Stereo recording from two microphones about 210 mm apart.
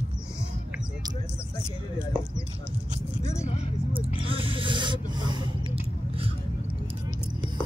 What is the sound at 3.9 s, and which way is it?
Snake, 25° right (ahead or behind).